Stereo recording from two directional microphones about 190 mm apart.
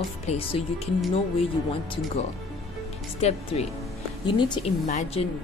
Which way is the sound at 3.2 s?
35° left (ahead or behind).